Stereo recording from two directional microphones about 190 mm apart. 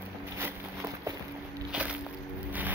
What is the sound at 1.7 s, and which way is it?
Walk, 5° right (ahead or behind).